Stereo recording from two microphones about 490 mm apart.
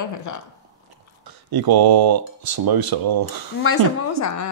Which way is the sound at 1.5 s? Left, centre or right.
Right.